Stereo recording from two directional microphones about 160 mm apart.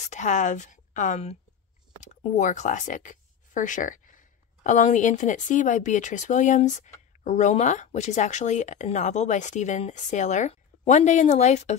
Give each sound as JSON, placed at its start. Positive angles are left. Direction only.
{"t": 0.1, "sound": "speech", "side_deg": 50}